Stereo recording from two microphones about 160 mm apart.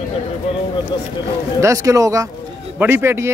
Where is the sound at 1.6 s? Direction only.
20° right (ahead or behind).